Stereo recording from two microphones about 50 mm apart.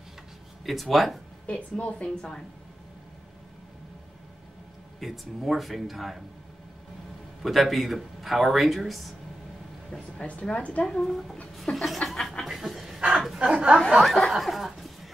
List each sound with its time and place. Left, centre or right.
0.7 s speech: centre
1.5 s a woman's voice: left
5.0 s speech: centre
7.4 s speech: centre
10.4 s a woman's voice: left
11.1 s speech: centre
12.0 s chuckle: centre
12.4 s dog: centre
13.1 s chuckle: centre
13.4 s speech: centre
14.0 s speech: centre
14.3 s a sound: centre